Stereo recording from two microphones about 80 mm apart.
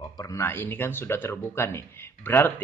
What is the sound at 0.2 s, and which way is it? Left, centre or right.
Speech, left.